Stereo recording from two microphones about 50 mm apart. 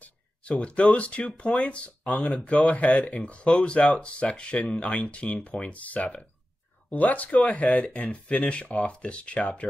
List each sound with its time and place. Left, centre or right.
0.0 s speech: left